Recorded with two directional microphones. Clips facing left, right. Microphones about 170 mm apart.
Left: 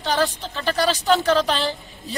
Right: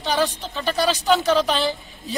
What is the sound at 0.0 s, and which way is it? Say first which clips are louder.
A woman's voice: even; 15° right (ahead or behind).